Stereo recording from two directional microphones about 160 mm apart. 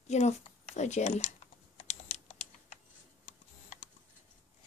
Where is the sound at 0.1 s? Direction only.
45° left (ahead or behind).